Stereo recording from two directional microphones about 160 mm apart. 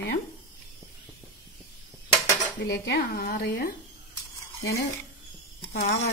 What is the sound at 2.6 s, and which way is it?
A woman's voice, 90° left.